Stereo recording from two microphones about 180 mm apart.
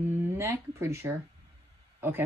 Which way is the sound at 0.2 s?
15° right (ahead or behind).